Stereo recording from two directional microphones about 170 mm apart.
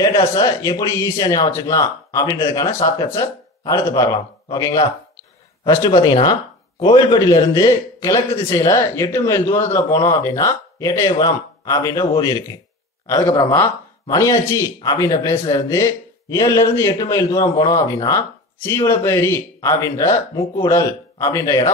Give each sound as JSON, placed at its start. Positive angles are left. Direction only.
{"t": 0.4, "sound": "speech", "side_deg": 20}